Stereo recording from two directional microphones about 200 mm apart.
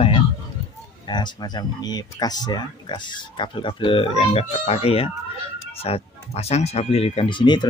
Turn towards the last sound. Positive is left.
turn(degrees=20)  # may be behind; listen again after turning